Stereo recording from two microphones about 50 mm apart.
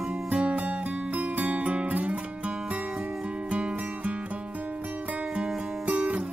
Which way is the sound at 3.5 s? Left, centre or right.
Right.